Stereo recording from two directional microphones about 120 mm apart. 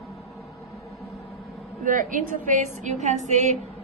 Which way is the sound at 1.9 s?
90° right.